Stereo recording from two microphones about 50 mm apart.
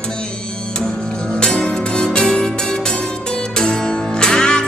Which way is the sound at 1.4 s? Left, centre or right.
Centre.